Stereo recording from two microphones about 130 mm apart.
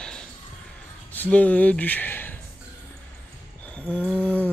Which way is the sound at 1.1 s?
10° left (ahead or behind).